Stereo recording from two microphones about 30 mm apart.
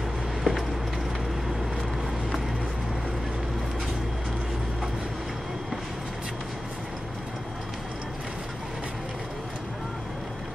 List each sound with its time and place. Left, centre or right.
0.4 s vehicle: centre